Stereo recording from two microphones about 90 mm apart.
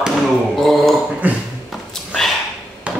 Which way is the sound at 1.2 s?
20° right (ahead or behind).